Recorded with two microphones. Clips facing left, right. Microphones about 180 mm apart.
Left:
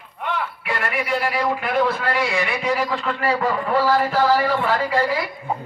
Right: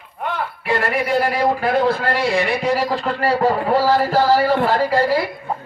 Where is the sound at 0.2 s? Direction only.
40° right (ahead or behind).